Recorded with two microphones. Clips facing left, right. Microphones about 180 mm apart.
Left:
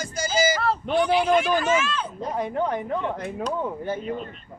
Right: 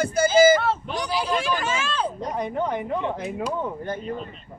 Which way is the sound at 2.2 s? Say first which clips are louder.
Even; 5° left (ahead or behind).